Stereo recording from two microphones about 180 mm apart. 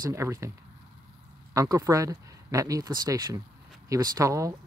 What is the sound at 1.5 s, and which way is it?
Speech, 20° right (ahead or behind).